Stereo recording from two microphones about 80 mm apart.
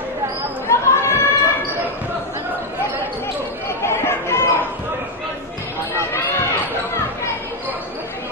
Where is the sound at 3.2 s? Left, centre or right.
Left.